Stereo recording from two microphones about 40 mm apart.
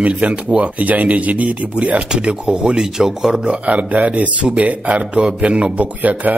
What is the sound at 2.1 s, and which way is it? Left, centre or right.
Speech, right.